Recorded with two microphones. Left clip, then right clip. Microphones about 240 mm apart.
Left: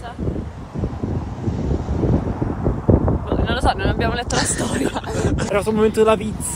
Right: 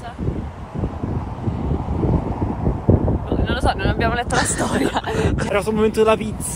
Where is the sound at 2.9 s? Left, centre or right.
Right.